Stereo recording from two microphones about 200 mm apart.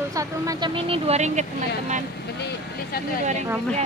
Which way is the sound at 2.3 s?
55° left (ahead or behind).